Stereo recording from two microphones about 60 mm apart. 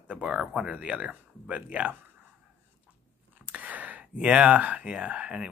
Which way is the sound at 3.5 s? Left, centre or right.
Right.